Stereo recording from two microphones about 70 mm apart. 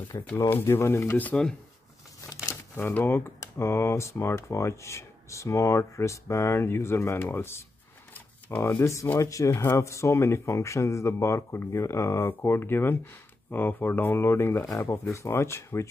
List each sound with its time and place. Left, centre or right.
0.1 s speech: left
0.5 s speech: left
1.3 s speech: centre
2.2 s a sound: left
2.9 s speech: left
9.2 s speech: left
9.5 s speech: left